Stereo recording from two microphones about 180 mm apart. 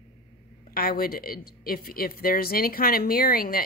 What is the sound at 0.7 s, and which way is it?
A woman's voice, 55° left (ahead or behind).